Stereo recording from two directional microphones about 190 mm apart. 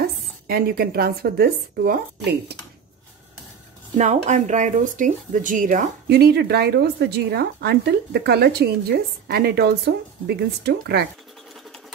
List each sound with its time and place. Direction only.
0.5 s speech: 55° right (ahead or behind)
3.9 s speech: 40° right (ahead or behind)
6.0 s speech: 60° right (ahead or behind)